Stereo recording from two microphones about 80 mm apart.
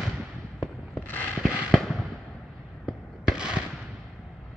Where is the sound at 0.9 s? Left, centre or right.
Left.